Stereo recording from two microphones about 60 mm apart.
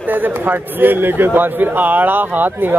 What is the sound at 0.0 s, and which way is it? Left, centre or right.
A man's voice, right.